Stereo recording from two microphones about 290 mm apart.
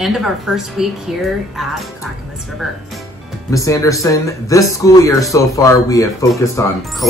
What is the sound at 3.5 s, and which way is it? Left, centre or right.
Speech, centre.